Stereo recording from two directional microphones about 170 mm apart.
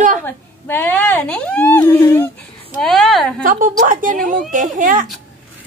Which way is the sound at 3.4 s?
50° right (ahead or behind).